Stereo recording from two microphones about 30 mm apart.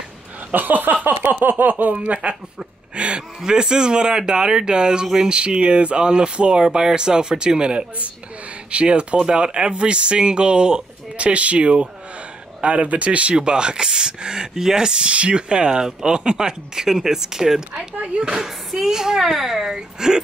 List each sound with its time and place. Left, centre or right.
0.5 s a sound: right
2.2 s speech: right
3.0 s speech: right
11.1 s speech: right
13.4 s speech: right
14.9 s speech: right
15.4 s a child's voice: right